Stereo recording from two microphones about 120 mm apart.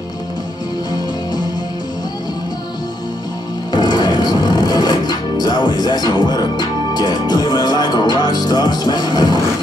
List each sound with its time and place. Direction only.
3.7 s music: 35° left (ahead or behind)